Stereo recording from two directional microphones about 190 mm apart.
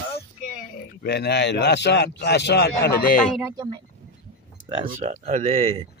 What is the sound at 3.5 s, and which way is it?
Speech, 25° right (ahead or behind).